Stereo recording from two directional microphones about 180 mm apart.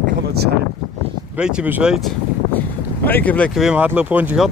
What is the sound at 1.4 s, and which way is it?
Speech, 5° right (ahead or behind).